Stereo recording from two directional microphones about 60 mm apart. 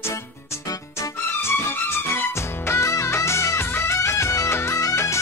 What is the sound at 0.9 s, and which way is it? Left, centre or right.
Music, left.